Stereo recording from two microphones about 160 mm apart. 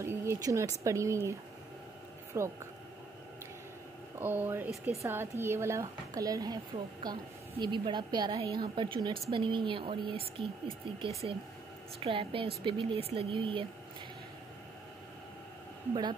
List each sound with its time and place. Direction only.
0.0 s a sound: 15° right (ahead or behind)
0.8 s speech: 20° right (ahead or behind)
2.3 s speech: 15° right (ahead or behind)
4.2 s speech: 10° right (ahead or behind); by 13.7 s 30° right (ahead or behind)
15.9 s speech: 30° right (ahead or behind)